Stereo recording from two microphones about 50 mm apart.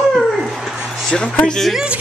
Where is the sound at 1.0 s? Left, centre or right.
Centre.